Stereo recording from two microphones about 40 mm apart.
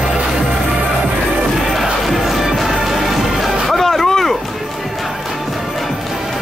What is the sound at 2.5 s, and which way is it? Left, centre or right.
Music, centre.